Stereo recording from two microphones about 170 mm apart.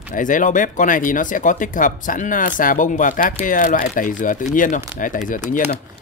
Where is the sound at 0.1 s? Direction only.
50° left (ahead or behind).